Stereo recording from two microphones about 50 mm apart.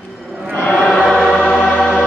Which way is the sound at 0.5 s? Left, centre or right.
Left.